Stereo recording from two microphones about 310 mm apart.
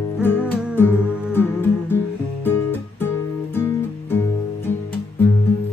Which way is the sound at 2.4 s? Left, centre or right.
Centre.